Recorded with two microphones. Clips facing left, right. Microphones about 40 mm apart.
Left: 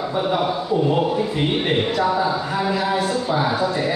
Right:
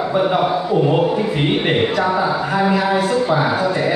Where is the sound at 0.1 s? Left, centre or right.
Centre.